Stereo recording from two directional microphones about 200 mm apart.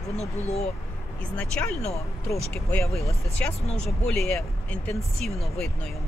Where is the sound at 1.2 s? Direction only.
5° left (ahead or behind).